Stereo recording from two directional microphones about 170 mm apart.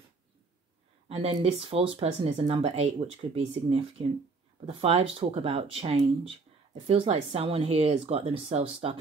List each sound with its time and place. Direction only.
1.0 s speech: 35° right (ahead or behind)